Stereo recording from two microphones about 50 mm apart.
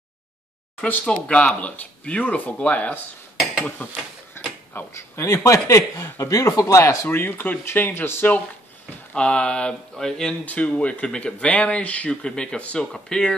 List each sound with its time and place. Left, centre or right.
0.7 s speech: left
1.0 s speech: left
4.4 s mechanisms: left
4.9 s speech: left
7.1 s speech: left
9.1 s speech: centre
10.4 s speech: left
11.1 s speech: centre